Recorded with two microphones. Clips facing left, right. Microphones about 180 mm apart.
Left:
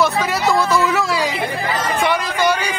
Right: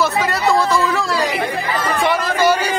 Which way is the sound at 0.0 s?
Centre (ahead or behind).